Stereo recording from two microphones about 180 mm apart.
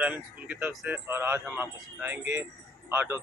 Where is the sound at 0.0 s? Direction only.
10° right (ahead or behind).